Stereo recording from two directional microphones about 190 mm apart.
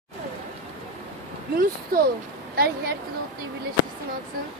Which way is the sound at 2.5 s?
55° right (ahead or behind).